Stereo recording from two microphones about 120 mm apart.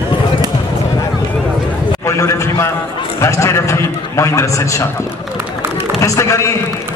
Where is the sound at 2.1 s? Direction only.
25° left (ahead or behind).